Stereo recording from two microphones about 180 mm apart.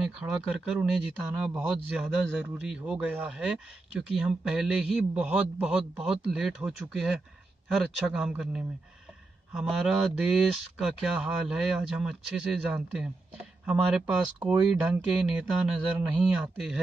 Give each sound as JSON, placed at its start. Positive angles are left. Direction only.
{"t": 0.2, "sound": "speech", "side_deg": -5}